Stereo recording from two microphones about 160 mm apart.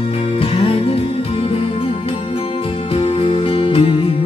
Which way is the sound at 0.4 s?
35° left (ahead or behind).